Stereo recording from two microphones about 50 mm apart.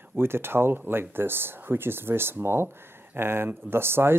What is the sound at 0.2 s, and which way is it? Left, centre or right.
Speech, right.